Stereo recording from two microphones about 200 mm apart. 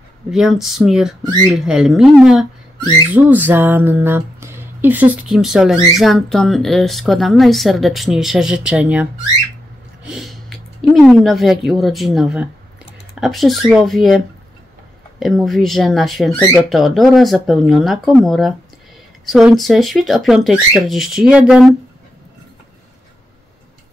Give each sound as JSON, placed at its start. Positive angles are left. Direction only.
{"t": 0.3, "sound": "speech", "side_deg": 0}
{"t": 10.0, "sound": "a sound", "side_deg": 0}
{"t": 11.0, "sound": "speech", "side_deg": 0}